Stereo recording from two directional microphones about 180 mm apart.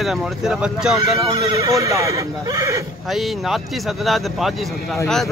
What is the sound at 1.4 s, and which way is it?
Speech, 15° right (ahead or behind).